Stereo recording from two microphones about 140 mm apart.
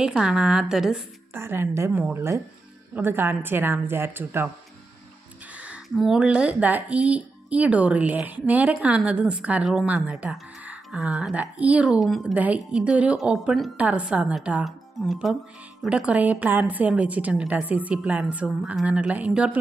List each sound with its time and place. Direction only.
0.0 s a woman's voice: 5° right (ahead or behind)
1.3 s speech: 15° right (ahead or behind)
5.6 s speech: 5° right (ahead or behind)